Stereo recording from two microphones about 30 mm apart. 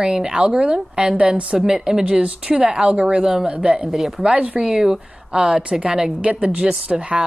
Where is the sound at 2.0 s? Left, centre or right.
Right.